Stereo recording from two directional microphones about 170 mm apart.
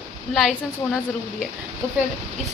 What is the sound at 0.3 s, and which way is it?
Speech, centre (ahead or behind).